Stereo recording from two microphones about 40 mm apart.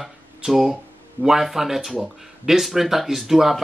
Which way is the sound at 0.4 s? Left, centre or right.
Centre.